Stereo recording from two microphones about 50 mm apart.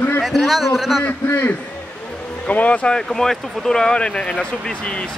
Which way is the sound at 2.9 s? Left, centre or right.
Centre.